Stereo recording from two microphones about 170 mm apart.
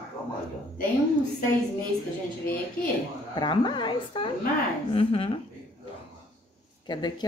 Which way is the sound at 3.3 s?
25° left (ahead or behind).